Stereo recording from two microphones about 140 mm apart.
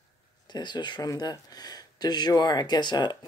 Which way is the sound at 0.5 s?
30° left (ahead or behind).